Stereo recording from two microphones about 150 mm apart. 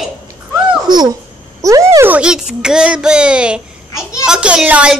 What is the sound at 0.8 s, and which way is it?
Babbling, 30° right (ahead or behind).